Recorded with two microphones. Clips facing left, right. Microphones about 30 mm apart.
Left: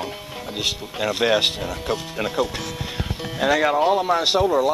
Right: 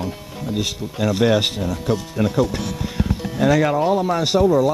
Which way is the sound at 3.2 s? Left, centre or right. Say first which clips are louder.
Right 2 dB; centre.